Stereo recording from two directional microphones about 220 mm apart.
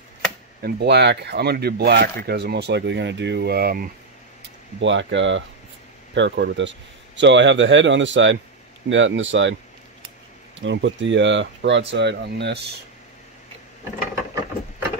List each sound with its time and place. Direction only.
0.6 s speech: 50° right (ahead or behind)
4.7 s speech: 55° right (ahead or behind)
10.6 s speech: 55° right (ahead or behind)